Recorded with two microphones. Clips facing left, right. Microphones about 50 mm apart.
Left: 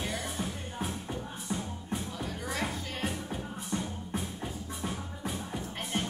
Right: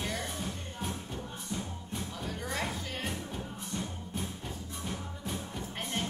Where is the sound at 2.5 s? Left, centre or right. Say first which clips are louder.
Left 1 dB; centre.